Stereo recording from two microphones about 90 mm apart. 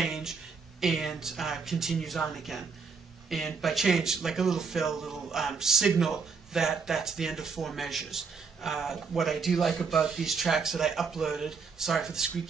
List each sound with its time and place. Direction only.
0.0 s speech: 5° right (ahead or behind)